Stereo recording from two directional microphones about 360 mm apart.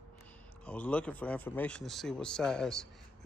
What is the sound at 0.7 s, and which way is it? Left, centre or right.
Speech, centre.